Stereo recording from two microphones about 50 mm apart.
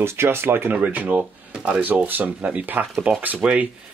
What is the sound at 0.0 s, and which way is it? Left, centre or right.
Speech, right.